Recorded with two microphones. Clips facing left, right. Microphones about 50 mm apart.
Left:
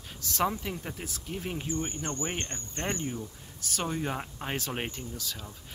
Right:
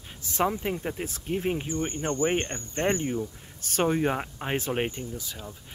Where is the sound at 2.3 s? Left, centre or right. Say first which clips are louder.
Right 8 dB; right.